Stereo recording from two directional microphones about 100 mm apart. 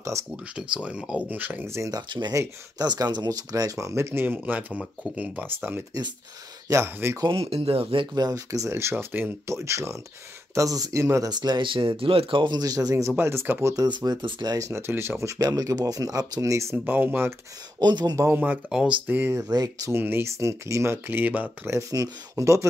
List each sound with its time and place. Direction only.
0.6 s speech: 10° right (ahead or behind)
1.9 s speech: 45° right (ahead or behind); by 7.2 s 25° right (ahead or behind)
7.2 s speech: 70° right (ahead or behind)
8.1 s speech: 40° right (ahead or behind); by 13.7 s 25° right (ahead or behind)
13.7 s speech: 45° right (ahead or behind)
14.5 s speech: 30° right (ahead or behind)
16.7 s speech: 20° right (ahead or behind)
17.7 s speech: 45° right (ahead or behind)
18.1 s speech: 20° right (ahead or behind)
18.7 s speech: 5° right (ahead or behind)
19.0 s speech: 20° right (ahead or behind)
19.5 s speech: 40° right (ahead or behind)
19.9 s speech: 25° right (ahead or behind)
21.7 s speech: 35° right (ahead or behind)